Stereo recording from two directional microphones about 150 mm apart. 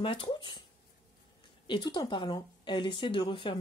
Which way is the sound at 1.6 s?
30° left (ahead or behind).